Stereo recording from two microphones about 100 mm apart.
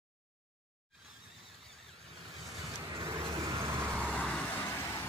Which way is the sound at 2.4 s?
35° right (ahead or behind).